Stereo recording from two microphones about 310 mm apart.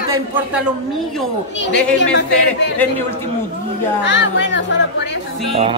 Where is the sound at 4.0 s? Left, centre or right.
Left.